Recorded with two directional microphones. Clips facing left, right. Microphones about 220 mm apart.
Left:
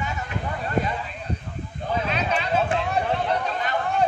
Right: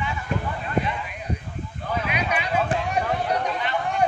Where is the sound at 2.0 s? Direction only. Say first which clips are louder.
Left 1 dB; 10° right (ahead or behind).